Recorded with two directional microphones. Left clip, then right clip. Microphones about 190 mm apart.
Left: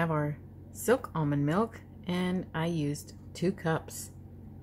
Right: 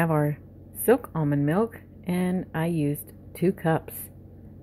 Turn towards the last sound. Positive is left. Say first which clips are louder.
# right 6 dB
turn(degrees=-15)  # may be behind; listen again after turning